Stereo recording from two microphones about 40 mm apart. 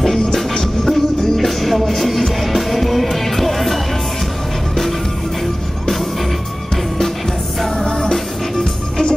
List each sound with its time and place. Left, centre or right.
0.0 s music: centre
7.8 s music: centre